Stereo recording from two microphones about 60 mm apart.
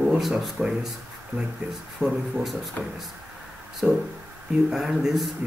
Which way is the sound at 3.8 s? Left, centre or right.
Centre.